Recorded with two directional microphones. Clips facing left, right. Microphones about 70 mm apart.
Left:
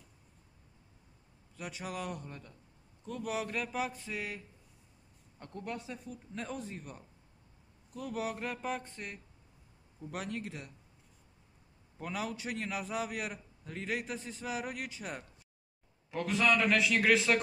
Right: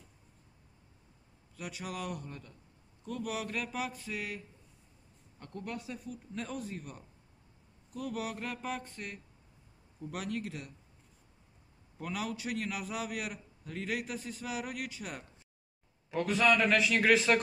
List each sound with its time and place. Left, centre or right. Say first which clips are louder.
1.6 s a man's voice: even; left
5.4 s a man's voice: even; centre
12.0 s a man's voice: right 1 dB; left
16.1 s a man's voice: right 2 dB; centre